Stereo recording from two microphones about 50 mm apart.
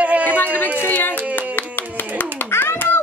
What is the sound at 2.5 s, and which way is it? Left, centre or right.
Hands, left.